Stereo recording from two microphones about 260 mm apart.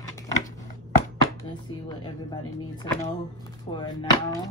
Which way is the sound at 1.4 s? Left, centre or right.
Centre.